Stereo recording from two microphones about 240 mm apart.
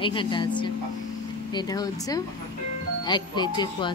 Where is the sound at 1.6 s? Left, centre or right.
Centre.